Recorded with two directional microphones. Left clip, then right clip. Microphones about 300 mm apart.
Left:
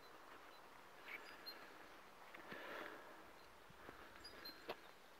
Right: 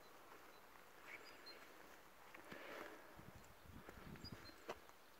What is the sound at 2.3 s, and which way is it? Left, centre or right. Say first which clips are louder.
Sniff: left 2 dB; centre.